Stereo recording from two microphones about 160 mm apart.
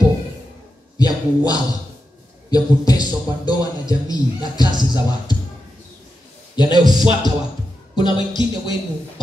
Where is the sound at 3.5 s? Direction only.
25° left (ahead or behind).